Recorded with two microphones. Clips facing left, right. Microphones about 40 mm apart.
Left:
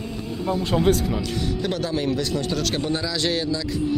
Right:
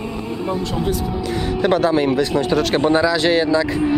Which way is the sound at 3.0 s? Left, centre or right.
Right.